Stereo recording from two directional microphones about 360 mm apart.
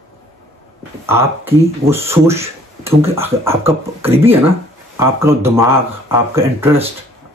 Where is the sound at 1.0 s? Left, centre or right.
Centre.